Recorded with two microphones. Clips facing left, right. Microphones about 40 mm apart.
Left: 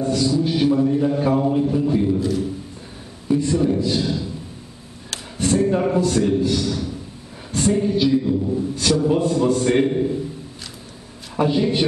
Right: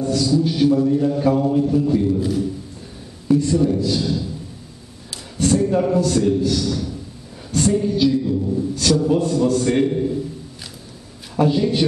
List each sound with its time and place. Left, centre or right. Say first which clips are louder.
0.0 s a man's voice: right 1 dB; centre
2.1 s a man's voice: right 1 dB; centre
3.3 s a man's voice: right 2 dB; centre
5.4 s a man's voice: right 1 dB; centre
11.3 s a man's voice: right 1 dB; centre